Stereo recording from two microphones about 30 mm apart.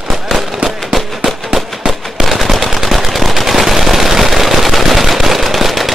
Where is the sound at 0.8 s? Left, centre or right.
Centre.